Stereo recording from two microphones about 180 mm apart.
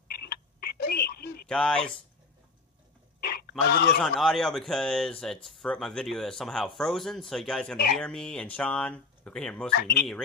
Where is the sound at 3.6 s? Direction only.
65° left (ahead or behind).